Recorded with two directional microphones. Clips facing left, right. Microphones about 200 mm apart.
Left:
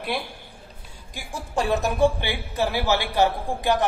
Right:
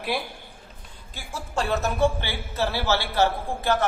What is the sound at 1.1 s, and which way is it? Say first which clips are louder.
A man's voice: left 2 dB; 15° left (ahead or behind).